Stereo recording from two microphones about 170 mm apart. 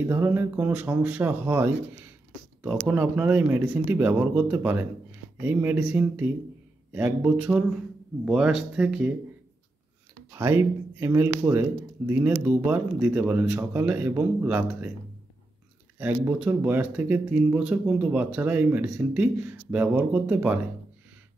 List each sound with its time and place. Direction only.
0.0 s speech: 15° right (ahead or behind)
10.3 s speech: 15° right (ahead or behind)
16.0 s speech: 10° right (ahead or behind)